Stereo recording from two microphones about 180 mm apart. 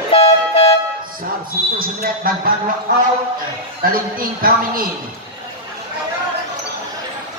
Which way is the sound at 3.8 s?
55° right (ahead or behind).